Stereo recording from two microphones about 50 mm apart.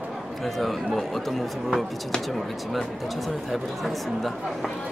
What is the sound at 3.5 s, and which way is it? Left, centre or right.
Speech, centre.